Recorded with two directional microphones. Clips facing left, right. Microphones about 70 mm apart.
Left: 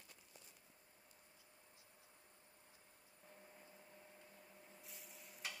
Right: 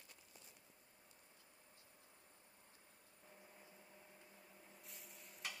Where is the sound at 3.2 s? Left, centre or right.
Centre.